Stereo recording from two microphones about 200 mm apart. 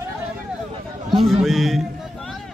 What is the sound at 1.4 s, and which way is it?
Speech, centre (ahead or behind).